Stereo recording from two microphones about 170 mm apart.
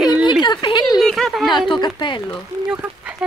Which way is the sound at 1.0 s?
Centre (ahead or behind).